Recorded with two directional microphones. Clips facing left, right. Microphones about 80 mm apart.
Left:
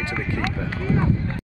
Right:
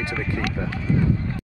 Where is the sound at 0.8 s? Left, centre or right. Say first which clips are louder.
Left 1 dB; left.